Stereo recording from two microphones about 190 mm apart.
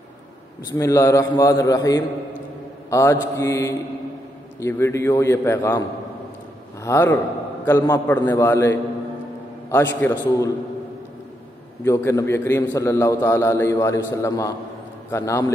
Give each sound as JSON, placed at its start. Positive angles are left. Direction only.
{"t": 0.7, "sound": "a man's voice", "side_deg": 15}
{"t": 9.9, "sound": "a man's voice", "side_deg": 10}
{"t": 11.8, "sound": "a man's voice", "side_deg": 15}